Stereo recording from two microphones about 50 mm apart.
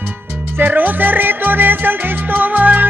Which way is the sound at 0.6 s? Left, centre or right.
Right.